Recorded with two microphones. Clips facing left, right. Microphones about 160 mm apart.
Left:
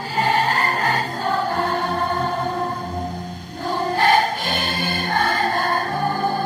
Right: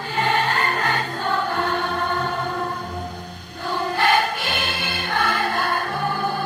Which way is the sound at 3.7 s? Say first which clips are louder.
Left 2 dB; 40° left (ahead or behind).